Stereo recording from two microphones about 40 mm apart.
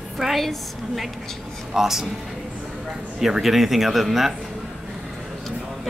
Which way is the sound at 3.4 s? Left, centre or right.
Centre.